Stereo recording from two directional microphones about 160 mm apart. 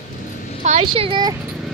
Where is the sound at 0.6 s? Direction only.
40° right (ahead or behind).